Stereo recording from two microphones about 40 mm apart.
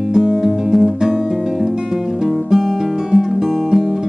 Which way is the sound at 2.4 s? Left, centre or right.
Centre.